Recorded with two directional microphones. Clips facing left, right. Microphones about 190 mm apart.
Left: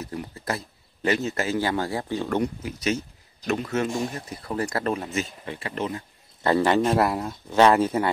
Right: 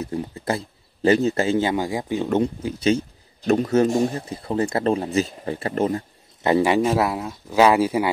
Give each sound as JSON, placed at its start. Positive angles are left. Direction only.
{"t": 0.0, "sound": "speech", "side_deg": -25}
{"t": 6.4, "sound": "speech", "side_deg": -15}